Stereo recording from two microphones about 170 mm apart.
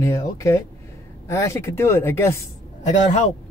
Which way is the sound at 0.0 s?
20° left (ahead or behind).